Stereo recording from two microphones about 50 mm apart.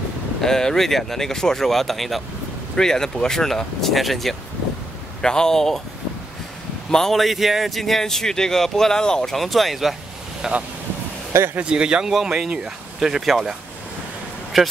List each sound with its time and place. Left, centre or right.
0.4 s speech: centre
5.2 s speech: centre
6.9 s speech: centre
9.4 s speech: centre
10.4 s speech: centre
11.6 s speech: centre
12.1 s speech: centre